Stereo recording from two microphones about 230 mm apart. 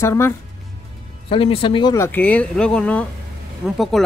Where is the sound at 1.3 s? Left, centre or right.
Left; by 4.0 s centre.